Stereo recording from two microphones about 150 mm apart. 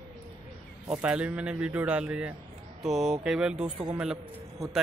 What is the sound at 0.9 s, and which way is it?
A man's voice, 5° right (ahead or behind).